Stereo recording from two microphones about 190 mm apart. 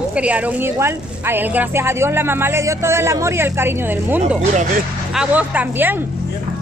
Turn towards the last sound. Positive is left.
turn(degrees=-10)  # may be behind; listen again after turning